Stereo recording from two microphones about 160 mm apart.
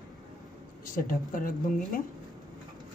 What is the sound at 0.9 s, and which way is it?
Speech, 60° left (ahead or behind).